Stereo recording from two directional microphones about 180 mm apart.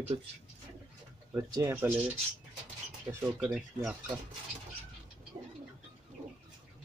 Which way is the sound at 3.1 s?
15° right (ahead or behind).